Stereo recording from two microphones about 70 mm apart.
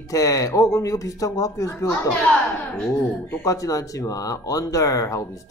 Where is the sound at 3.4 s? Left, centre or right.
Left.